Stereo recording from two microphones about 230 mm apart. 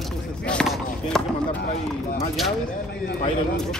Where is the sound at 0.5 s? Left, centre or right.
Centre.